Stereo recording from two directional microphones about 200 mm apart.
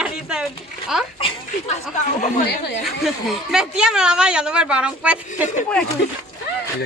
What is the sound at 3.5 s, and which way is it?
A woman's voice, 5° right (ahead or behind).